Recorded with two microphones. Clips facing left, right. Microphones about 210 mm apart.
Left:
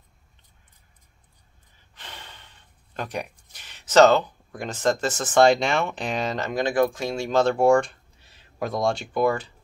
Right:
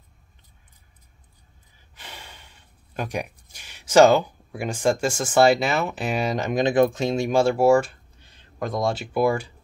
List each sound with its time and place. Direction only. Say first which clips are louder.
2.0 s gasp: right 1 dB; 10° right (ahead or behind)
3.0 s speech: right 2 dB; 10° right (ahead or behind)